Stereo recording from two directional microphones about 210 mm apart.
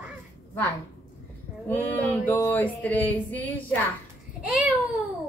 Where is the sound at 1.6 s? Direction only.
10° left (ahead or behind).